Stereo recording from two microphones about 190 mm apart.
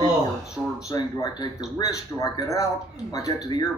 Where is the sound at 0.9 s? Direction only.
20° left (ahead or behind).